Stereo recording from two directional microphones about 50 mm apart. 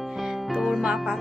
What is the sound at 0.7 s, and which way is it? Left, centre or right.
Speech, centre.